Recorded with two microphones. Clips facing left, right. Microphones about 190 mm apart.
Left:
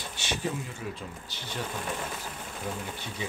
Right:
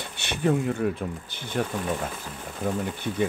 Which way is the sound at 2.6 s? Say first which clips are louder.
Right 9 dB; 60° right (ahead or behind).